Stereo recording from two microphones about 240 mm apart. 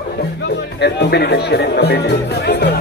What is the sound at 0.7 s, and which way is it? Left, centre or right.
Speech, left.